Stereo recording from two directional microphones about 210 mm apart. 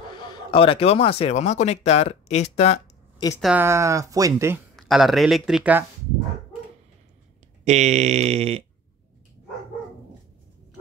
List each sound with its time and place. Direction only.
0.1 s speech: 20° left (ahead or behind)
3.3 s speech: centre (ahead or behind)
3.6 s speech: 15° right (ahead or behind)
4.7 s speech: centre (ahead or behind)
7.6 s a sound: 30° right (ahead or behind)